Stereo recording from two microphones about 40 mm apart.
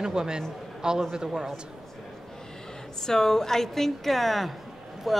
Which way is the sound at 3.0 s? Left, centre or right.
Centre.